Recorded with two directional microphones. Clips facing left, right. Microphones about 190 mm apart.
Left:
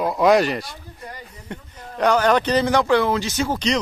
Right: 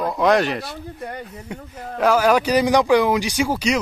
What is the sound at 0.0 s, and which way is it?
Speech, 5° left (ahead or behind).